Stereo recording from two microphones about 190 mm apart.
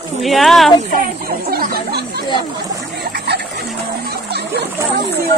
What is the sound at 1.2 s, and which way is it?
Chatter, 50° right (ahead or behind).